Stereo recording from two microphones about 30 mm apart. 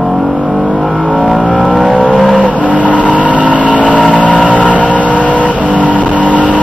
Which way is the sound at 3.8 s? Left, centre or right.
Right.